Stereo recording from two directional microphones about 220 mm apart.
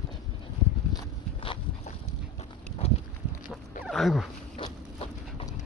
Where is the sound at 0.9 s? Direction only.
25° left (ahead or behind).